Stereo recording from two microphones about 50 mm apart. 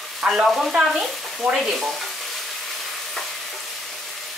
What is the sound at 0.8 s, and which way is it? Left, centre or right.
Frying, centre.